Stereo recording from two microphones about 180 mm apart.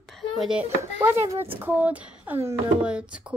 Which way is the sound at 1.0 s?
15° right (ahead or behind).